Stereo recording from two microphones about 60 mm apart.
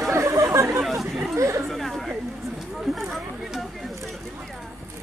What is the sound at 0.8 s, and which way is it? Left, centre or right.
Speech, centre.